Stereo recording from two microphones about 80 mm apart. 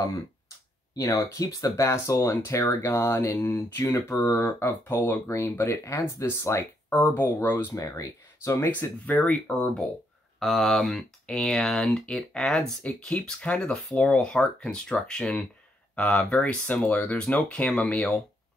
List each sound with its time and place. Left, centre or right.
0.9 s speech: left
4.8 s speech: left
5.3 s speech: left
6.9 s speech: left
7.3 s speech: left
8.7 s speech: centre
10.4 s speech: centre
13.6 s speech: centre
13.9 s speech: centre